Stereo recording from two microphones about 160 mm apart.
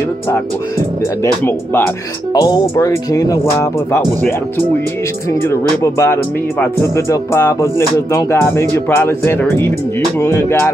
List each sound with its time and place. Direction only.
1.2 s music: 15° left (ahead or behind)
2.4 s speech: 30° left (ahead or behind)
5.3 s music: 15° left (ahead or behind)